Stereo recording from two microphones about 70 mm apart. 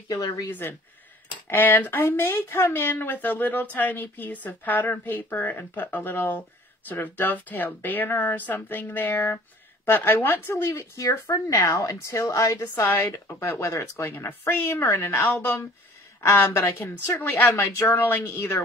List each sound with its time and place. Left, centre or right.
0.1 s speech: left
0.5 s speech: left
10.5 s speech: left
13.1 s speech: left
17.6 s speech: left